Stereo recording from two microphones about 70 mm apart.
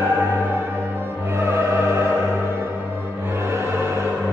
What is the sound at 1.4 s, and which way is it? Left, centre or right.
Music, right.